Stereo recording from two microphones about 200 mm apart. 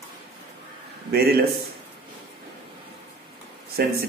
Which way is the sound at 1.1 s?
50° right (ahead or behind).